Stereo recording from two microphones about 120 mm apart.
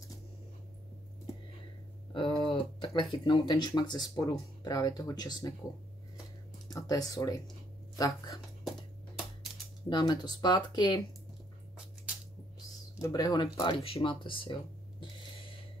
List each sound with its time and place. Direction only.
2.4 s speech: 45° left (ahead or behind)
6.7 s speech: 30° left (ahead or behind)
9.8 s speech: 35° left (ahead or behind)
13.0 s speech: 30° left (ahead or behind)
13.8 s music: 50° left (ahead or behind)